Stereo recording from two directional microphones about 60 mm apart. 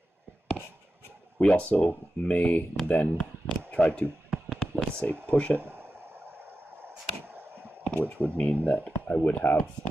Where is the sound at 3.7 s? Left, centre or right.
Left.